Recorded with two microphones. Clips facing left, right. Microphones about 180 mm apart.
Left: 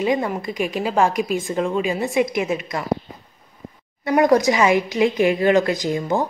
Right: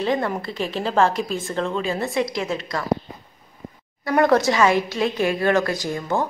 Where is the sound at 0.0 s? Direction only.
10° left (ahead or behind).